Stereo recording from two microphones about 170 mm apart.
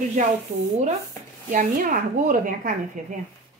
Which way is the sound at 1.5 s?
50° right (ahead or behind).